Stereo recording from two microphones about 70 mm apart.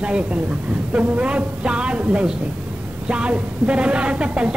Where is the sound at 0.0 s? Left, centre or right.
Centre.